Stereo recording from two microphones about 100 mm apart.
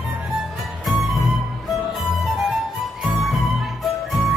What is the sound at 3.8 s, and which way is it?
Music, centre (ahead or behind).